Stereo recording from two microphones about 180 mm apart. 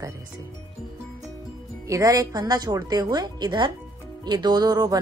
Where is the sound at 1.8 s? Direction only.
20° right (ahead or behind).